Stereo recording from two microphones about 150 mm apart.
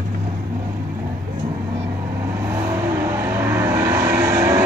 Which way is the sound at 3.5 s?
20° right (ahead or behind).